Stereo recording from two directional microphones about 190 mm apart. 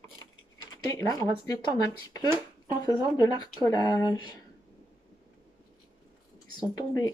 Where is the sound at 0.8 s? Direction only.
20° left (ahead or behind).